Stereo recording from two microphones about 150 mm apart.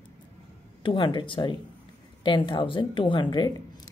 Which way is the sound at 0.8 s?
35° left (ahead or behind).